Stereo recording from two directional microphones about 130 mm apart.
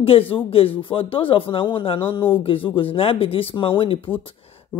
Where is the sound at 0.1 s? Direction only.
45° left (ahead or behind).